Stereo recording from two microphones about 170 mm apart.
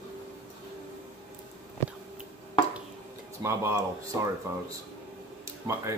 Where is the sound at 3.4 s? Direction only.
15° right (ahead or behind).